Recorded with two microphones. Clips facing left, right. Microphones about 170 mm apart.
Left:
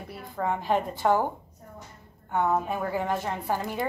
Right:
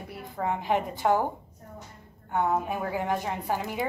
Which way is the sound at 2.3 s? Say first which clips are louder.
Left 1 dB; 15° right (ahead or behind).